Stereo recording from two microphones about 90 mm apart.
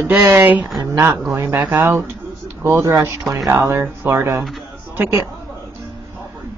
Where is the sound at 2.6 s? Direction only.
35° right (ahead or behind).